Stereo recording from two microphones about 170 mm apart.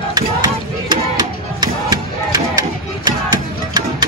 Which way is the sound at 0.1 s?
25° right (ahead or behind).